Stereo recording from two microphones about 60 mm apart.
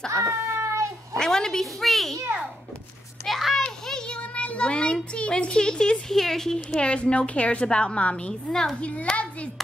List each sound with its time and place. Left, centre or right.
0.1 s a sound: right
1.1 s a woman's voice: centre
3.3 s children playing: centre
4.2 s child singing: left
5.1 s a woman's voice: centre
6.8 s a woman's voice: centre
9.1 s a child's voice: left